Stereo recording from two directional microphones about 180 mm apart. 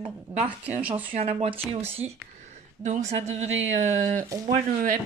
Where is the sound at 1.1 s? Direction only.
35° right (ahead or behind).